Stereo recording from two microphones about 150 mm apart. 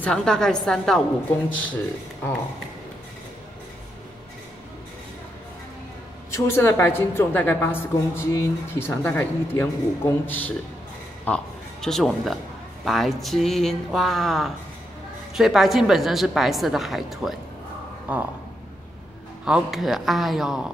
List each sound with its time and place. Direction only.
0.0 s a woman's voice: 5° left (ahead or behind)
6.3 s a woman's voice: 15° left (ahead or behind); by 17.4 s centre (ahead or behind)
18.1 s a sound: 10° right (ahead or behind)
19.4 s a woman's voice: 5° right (ahead or behind)